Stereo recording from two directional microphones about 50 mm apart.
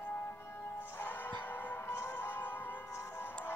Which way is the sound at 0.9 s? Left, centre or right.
Left.